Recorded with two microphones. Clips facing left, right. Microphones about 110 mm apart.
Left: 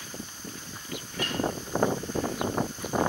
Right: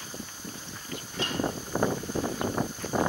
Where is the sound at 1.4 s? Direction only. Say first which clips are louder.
Left 2 dB; 20° left (ahead or behind).